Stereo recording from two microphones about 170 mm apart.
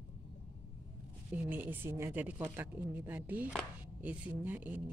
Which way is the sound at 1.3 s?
10° right (ahead or behind).